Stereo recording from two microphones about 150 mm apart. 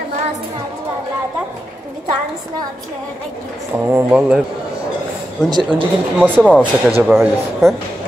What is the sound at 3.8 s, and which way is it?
Speech, 10° right (ahead or behind).